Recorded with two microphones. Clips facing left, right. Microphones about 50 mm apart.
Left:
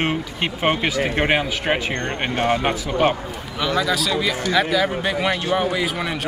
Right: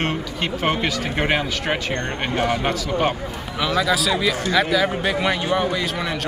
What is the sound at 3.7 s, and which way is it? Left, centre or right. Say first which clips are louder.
A man's voice: right 1 dB; centre.